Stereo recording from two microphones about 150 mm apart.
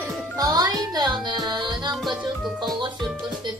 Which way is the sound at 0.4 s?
25° right (ahead or behind).